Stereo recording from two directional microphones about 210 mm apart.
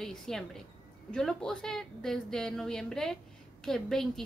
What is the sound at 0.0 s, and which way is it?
A woman's voice, centre (ahead or behind).